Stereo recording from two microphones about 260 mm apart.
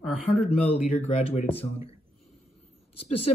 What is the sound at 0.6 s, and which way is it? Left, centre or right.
Speech, left.